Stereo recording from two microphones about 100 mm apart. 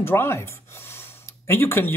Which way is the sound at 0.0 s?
25° left (ahead or behind).